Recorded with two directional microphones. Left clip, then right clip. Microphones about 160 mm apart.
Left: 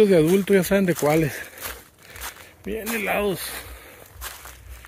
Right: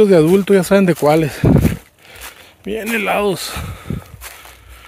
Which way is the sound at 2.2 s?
Centre (ahead or behind).